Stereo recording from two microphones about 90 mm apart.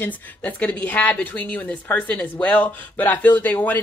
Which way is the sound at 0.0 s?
20° left (ahead or behind).